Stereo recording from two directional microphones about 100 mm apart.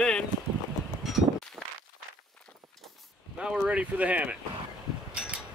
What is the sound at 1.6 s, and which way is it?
Walk, 25° right (ahead or behind).